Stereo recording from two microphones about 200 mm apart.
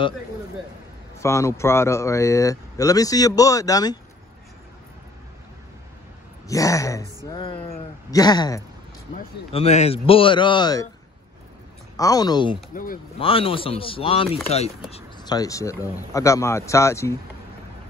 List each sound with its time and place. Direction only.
1.2 s speech: 15° left (ahead or behind)
6.4 s speech: 15° left (ahead or behind)
9.5 s speech: 30° left (ahead or behind)
12.0 s speech: 20° left (ahead or behind)
12.7 s speech: 45° left (ahead or behind)
13.2 s speech: 30° left (ahead or behind)